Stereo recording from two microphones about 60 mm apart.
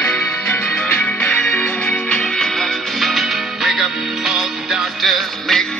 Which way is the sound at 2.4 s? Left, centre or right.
Centre.